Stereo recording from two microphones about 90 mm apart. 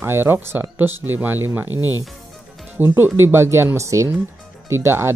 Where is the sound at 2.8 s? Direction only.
25° right (ahead or behind).